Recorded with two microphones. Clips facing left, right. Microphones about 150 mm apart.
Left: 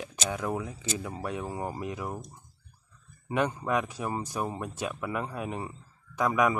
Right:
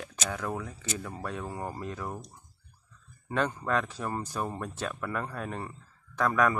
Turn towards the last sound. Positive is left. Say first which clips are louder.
# left 1 dB
turn(degrees=15)  # may be behind; listen again after turning